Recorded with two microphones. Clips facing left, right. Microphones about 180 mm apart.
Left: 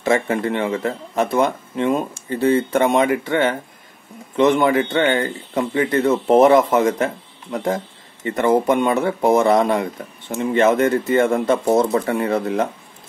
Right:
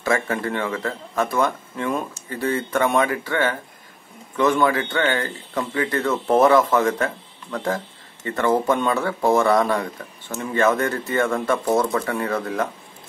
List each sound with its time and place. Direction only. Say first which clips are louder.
0.0 s speech: left 4 dB; 25° left (ahead or behind)